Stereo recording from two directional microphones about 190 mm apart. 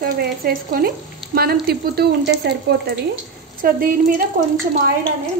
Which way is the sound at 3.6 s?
50° right (ahead or behind).